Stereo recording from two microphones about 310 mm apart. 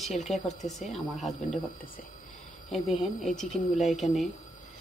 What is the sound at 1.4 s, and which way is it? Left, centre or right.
Speech, left.